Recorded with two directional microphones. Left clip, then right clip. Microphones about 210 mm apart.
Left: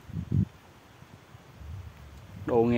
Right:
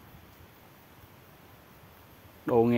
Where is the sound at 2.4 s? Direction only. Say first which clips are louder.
Even; 10° right (ahead or behind).